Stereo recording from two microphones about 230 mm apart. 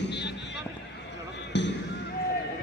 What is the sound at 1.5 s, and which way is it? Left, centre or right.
Basketball bounce, left.